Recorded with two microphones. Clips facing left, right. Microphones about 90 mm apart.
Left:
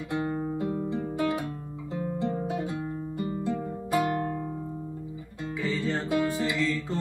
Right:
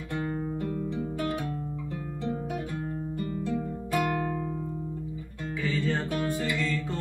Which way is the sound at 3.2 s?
20° left (ahead or behind).